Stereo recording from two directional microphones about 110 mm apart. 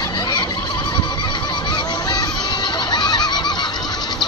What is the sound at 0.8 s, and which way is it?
Neigh, 45° left (ahead or behind).